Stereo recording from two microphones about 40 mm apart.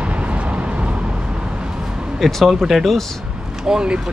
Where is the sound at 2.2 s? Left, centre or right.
Centre.